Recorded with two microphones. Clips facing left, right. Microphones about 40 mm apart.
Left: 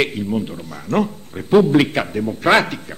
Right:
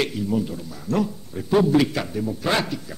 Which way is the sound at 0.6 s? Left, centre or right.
Left.